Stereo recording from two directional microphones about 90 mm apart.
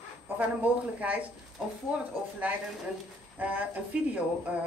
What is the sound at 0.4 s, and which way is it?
Speech, 15° right (ahead or behind).